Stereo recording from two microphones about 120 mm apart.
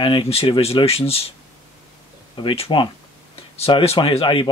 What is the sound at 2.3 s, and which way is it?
Speech, 45° left (ahead or behind).